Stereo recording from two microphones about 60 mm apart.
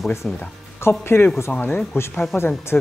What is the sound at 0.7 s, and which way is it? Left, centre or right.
Speech, left.